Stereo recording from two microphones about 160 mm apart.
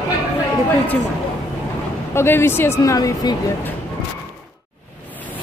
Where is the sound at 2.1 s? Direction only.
15° left (ahead or behind).